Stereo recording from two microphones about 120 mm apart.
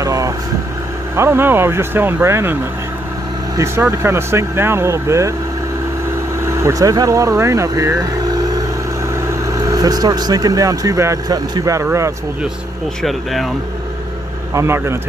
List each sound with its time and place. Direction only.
0.0 s vehicle: 25° right (ahead or behind)
1.1 s speech: 20° right (ahead or behind)
6.4 s speech: 25° right (ahead or behind)
9.3 s speech: 30° right (ahead or behind)
13.0 s speech: centre (ahead or behind)
14.5 s speech: 25° right (ahead or behind)